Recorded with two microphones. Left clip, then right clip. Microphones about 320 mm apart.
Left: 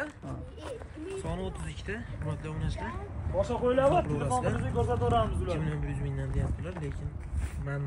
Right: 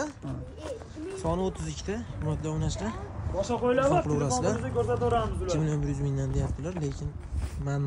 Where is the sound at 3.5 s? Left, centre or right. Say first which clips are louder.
Right 1 dB; centre.